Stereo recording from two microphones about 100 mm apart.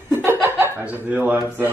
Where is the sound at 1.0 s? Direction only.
15° right (ahead or behind).